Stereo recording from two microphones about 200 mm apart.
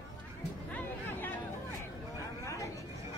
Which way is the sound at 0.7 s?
10° left (ahead or behind).